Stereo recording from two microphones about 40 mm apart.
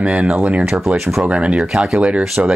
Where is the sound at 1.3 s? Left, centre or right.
Right.